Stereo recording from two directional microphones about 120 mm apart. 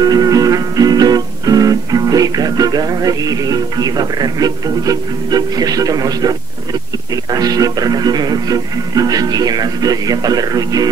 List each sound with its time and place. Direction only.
0.0 s music: 30° right (ahead or behind)
7.2 s speech: 30° right (ahead or behind)